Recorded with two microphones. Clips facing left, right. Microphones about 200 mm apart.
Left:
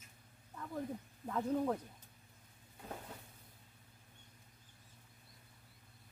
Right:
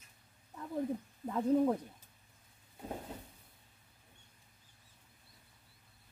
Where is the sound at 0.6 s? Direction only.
15° right (ahead or behind).